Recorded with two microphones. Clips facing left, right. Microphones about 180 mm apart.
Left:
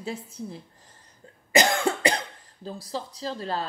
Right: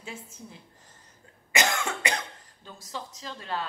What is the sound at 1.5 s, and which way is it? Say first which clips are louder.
Cough: left 6 dB; 35° left (ahead or behind).